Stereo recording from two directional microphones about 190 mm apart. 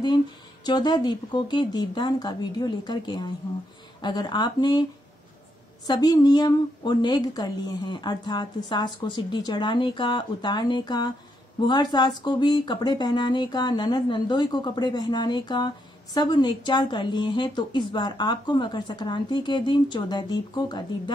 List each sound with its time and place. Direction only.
0.7 s speech: 20° left (ahead or behind)
5.9 s speech: 20° left (ahead or behind)